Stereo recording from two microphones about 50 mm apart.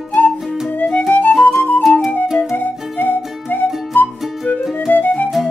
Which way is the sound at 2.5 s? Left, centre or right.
Left.